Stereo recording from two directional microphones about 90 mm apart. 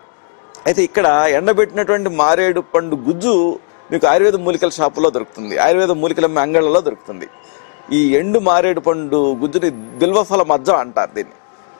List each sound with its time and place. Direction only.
0.7 s a man's voice: 15° left (ahead or behind)